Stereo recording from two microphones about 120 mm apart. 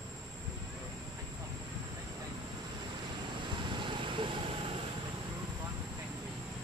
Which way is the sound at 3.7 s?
45° right (ahead or behind).